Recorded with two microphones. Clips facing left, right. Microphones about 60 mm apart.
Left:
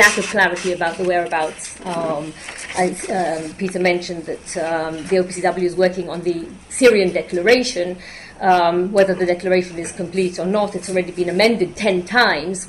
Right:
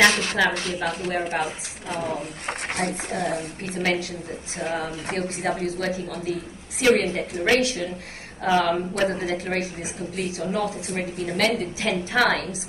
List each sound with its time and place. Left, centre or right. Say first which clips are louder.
0.0 s speech: left 5 dB; centre
0.7 s a woman's voice: left 8 dB; left